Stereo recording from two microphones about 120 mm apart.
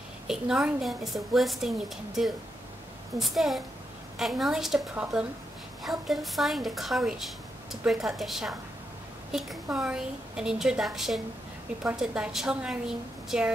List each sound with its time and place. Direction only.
0.3 s a woman's voice: 5° right (ahead or behind)
3.2 s a woman's voice: centre (ahead or behind)